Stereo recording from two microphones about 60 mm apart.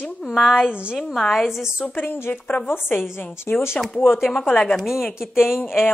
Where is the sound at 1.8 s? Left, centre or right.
Left.